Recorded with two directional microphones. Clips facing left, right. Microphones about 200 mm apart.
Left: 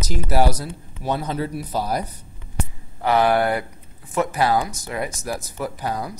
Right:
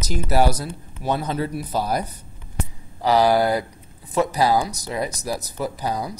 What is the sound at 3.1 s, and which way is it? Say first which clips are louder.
Speech: right 1 dB; 35° right (ahead or behind).